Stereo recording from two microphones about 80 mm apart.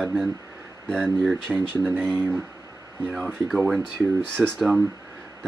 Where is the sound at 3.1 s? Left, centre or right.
Centre.